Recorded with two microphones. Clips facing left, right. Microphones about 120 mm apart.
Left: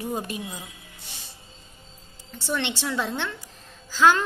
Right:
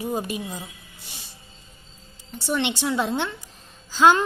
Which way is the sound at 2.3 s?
15° right (ahead or behind).